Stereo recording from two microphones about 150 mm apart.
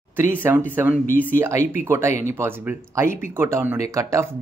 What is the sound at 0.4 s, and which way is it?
Speech, 15° right (ahead or behind).